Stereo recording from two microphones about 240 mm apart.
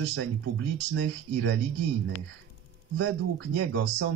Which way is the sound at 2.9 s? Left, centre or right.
Right.